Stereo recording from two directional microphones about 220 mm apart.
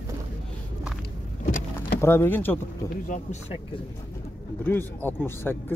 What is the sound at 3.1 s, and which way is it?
Speech, 30° left (ahead or behind).